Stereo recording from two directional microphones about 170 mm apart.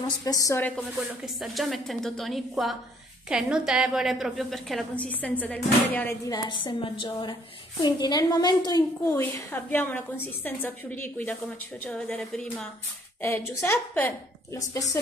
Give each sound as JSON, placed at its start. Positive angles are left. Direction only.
{"t": 0.0, "sound": "a woman's voice", "side_deg": 20}
{"t": 6.2, "sound": "a woman's voice", "side_deg": 25}